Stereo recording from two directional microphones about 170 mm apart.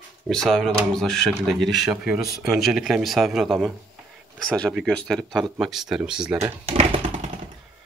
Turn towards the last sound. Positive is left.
turn(degrees=-40)  # may be behind; listen again after turning